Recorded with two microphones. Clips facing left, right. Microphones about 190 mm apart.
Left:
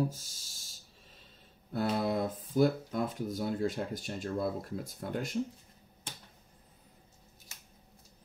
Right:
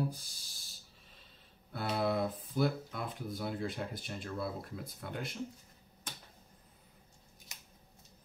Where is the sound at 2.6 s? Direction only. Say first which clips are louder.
Left 6 dB; 45° left (ahead or behind).